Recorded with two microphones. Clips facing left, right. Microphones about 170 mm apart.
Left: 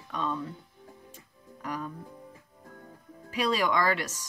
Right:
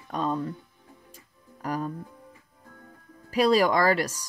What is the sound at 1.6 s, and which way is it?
Speech, 40° right (ahead or behind).